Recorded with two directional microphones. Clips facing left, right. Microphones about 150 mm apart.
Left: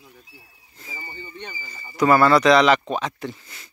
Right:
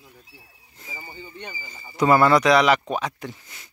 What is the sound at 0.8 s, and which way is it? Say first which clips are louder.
Speech: left 1 dB; 10° right (ahead or behind).